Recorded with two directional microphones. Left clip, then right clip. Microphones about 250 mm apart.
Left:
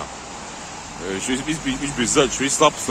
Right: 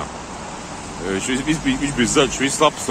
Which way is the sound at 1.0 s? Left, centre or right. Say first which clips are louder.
Right 3 dB; centre.